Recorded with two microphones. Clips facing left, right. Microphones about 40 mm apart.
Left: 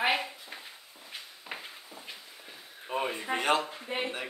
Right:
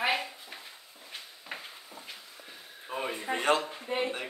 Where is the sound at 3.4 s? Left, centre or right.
Centre.